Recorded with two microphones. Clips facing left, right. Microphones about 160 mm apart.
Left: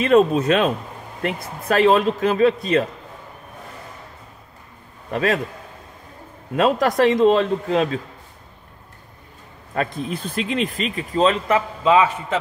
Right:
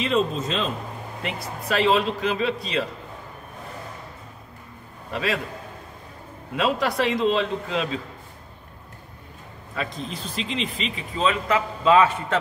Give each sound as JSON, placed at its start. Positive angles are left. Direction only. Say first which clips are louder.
{"t": 0.0, "sound": "speech", "louder": "left 8 dB", "side_deg": 55}
{"t": 1.2, "sound": "speech", "louder": "left 6 dB", "side_deg": 50}
{"t": 5.1, "sound": "speech", "louder": "left 6 dB", "side_deg": 50}
{"t": 6.5, "sound": "speech", "louder": "left 5 dB", "side_deg": 45}
{"t": 9.8, "sound": "speech", "louder": "left 6 dB", "side_deg": 55}
{"t": 11.4, "sound": "a man's voice", "louder": "left 2 dB", "side_deg": 20}